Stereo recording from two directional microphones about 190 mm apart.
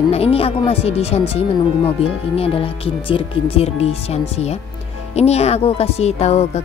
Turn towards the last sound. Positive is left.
turn(degrees=35)  # may be behind; listen again after turning